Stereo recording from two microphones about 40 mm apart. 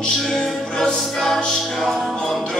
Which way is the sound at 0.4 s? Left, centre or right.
Centre.